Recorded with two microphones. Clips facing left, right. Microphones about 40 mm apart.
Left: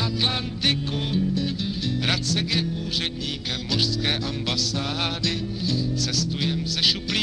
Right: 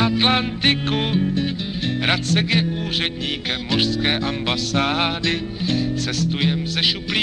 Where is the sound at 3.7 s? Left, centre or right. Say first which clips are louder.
Right 5 dB; right.